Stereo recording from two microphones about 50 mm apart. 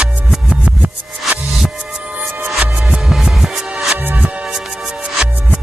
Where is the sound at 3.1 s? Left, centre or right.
Centre.